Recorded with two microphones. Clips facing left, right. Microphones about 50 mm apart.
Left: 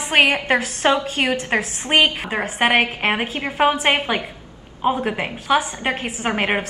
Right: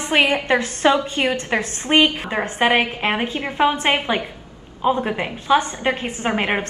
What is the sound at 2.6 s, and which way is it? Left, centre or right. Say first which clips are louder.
Speech: even; left.